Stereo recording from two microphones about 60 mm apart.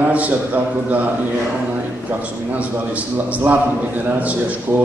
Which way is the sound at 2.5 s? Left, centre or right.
Right.